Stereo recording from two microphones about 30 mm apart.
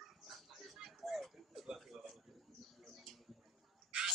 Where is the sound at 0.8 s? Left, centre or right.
Centre.